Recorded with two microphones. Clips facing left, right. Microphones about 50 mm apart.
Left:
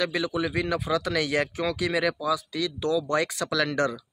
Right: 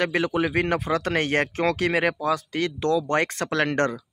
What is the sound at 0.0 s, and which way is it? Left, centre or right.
Speech, right.